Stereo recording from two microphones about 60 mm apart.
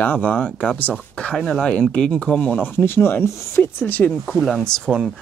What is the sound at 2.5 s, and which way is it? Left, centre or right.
Speech, left.